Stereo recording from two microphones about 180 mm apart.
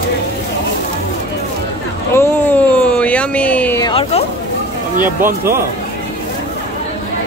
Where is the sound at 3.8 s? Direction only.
25° left (ahead or behind).